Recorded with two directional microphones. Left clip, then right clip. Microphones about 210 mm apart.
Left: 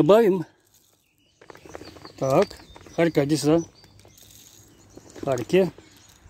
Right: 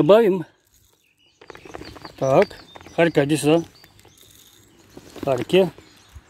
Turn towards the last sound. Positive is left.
turn(degrees=5)  # may be behind; listen again after turning